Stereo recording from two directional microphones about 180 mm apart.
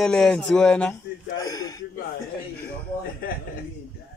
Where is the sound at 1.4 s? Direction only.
20° left (ahead or behind).